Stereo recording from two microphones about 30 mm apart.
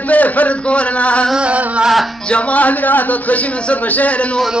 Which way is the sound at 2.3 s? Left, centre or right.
Left.